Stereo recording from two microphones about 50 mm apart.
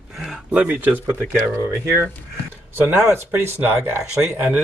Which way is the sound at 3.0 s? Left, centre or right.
Right.